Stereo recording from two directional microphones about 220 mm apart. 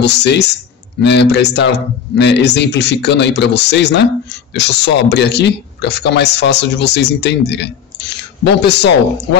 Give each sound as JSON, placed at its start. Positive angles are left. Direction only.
{"t": 0.0, "sound": "speech", "side_deg": 50}